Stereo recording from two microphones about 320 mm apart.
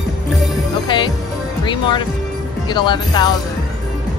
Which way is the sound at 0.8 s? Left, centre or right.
Centre.